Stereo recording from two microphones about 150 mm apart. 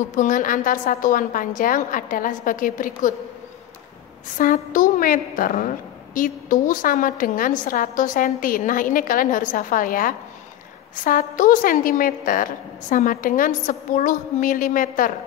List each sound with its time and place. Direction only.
0.1 s a woman's voice: 60° left (ahead or behind)
4.4 s a woman's voice: 65° left (ahead or behind)